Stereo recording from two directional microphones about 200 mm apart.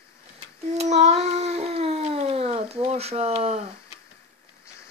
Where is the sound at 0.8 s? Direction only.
35° right (ahead or behind).